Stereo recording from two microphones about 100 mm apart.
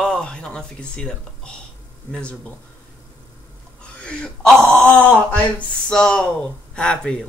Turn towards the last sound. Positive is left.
turn(degrees=10)  # may be behind; listen again after turning